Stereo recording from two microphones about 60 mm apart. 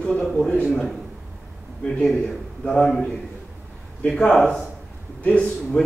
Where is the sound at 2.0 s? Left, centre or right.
Centre.